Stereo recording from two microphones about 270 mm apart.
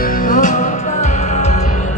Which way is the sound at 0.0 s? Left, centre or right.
Left.